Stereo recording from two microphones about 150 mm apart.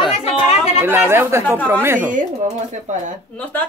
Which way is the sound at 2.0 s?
55° right (ahead or behind).